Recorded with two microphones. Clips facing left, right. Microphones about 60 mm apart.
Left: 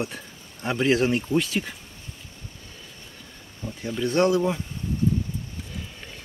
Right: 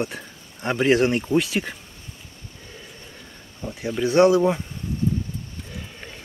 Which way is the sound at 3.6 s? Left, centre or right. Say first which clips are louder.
Right 3 dB; centre.